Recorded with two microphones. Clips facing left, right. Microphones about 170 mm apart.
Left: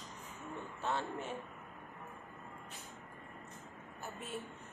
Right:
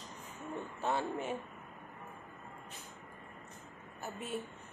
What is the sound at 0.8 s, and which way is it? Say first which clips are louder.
Speech: right 3 dB; 10° right (ahead or behind).